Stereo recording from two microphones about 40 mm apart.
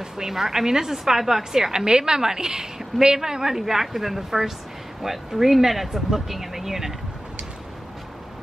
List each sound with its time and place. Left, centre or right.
0.0 s a woman's voice: centre